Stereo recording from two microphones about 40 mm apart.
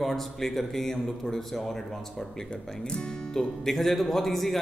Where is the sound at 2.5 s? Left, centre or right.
Left.